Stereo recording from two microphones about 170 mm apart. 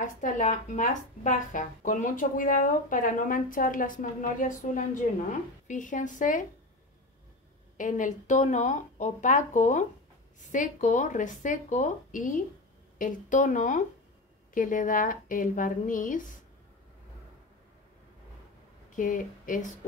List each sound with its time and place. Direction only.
0.0 s speech: 45° left (ahead or behind)
7.7 s speech: 50° left (ahead or behind)
18.9 s speech: 50° left (ahead or behind)